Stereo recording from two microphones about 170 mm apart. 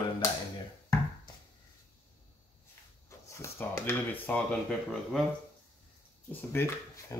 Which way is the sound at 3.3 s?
15° left (ahead or behind).